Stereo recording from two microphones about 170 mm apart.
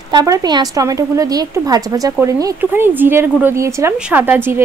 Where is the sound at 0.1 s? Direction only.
20° right (ahead or behind).